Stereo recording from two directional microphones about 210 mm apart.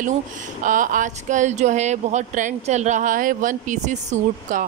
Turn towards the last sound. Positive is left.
turn(degrees=-35)  # may be behind; listen again after turning